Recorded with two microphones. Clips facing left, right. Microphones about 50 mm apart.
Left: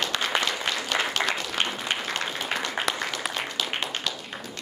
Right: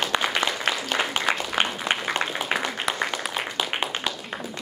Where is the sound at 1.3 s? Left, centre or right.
Centre.